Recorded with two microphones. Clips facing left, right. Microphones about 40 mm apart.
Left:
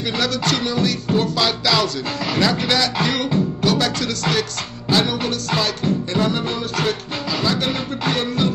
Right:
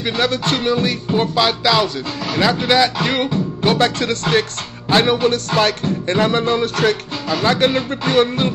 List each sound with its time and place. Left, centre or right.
0.2 s music: right